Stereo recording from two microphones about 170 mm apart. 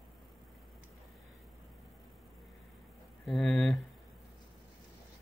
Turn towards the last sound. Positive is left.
turn(degrees=0)  # may be behind; listen again after turning